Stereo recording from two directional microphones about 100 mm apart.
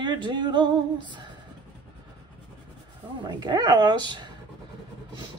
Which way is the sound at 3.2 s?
45° right (ahead or behind).